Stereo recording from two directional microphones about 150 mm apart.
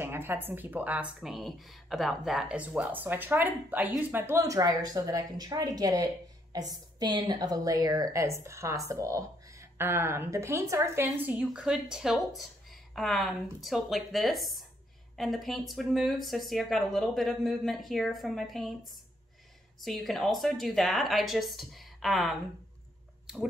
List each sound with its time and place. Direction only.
0.0 s a woman's voice: 15° right (ahead or behind); by 18.7 s centre (ahead or behind)
19.8 s speech: centre (ahead or behind)
23.2 s squish: 5° right (ahead or behind)